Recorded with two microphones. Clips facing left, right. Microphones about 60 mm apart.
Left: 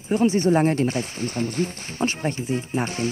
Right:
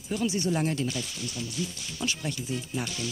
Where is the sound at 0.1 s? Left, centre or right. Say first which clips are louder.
Left 9 dB; left.